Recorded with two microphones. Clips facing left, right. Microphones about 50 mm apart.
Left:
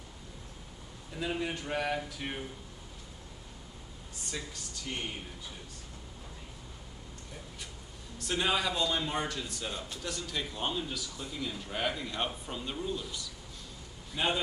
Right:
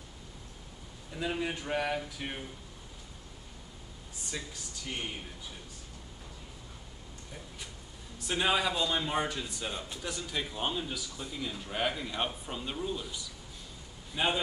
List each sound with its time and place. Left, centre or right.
1.1 s speech: centre
4.3 s speech: centre
8.2 s a man's voice: centre